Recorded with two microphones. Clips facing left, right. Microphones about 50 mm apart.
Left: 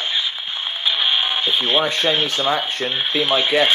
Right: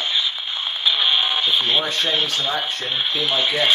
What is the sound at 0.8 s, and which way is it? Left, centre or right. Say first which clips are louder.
Radio: even; centre.